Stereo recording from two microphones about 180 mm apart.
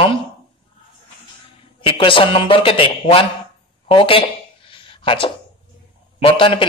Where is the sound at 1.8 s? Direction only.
30° left (ahead or behind).